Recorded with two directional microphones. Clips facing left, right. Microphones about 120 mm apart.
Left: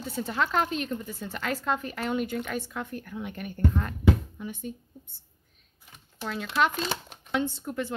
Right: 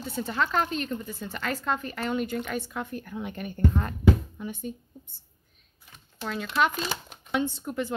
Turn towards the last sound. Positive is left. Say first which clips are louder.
# right 1 dB
turn(degrees=-15)  # may be behind; listen again after turning